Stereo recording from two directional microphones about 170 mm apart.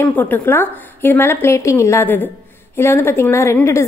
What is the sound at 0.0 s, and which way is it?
A woman's voice, 10° left (ahead or behind).